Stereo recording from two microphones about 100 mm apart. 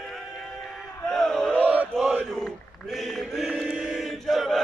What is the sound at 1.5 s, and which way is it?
Chant, 10° right (ahead or behind).